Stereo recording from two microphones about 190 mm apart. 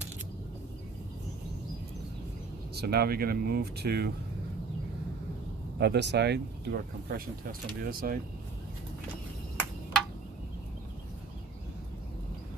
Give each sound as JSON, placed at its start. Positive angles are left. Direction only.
{"t": 2.7, "sound": "speech", "side_deg": -55}
{"t": 5.8, "sound": "speech", "side_deg": -65}